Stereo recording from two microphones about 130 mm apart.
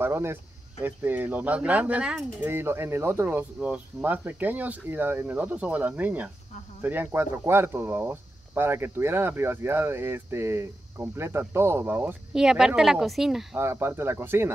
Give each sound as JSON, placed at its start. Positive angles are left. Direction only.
{"t": 0.0, "sound": "speech", "side_deg": -20}
{"t": 13.6, "sound": "speech", "side_deg": -20}